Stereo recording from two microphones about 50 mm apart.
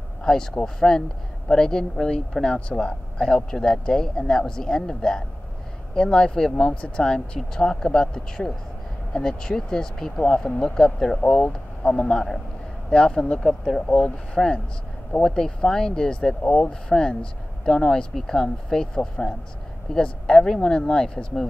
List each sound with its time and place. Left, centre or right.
0.2 s speech: centre
6.5 s speech: left
13.4 s speech: centre
13.9 s speech: centre